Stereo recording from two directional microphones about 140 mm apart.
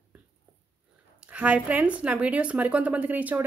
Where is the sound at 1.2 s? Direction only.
10° right (ahead or behind).